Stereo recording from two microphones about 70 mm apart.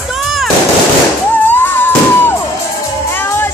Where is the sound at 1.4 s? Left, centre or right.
Left.